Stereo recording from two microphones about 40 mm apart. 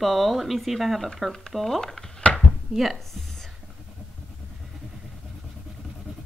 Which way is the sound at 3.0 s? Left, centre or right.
Centre.